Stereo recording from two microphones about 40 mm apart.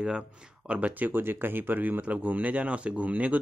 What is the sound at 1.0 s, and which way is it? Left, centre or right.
Speech, right.